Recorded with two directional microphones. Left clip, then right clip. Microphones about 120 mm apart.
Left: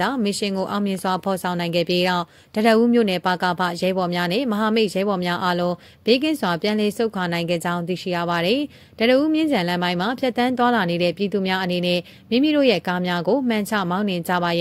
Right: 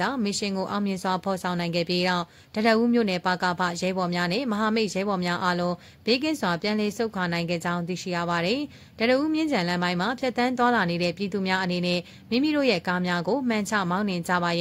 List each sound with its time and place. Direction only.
0.0 s speech: 25° left (ahead or behind)